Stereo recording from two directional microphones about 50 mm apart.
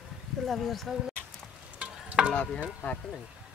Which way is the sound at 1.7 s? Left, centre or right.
Right.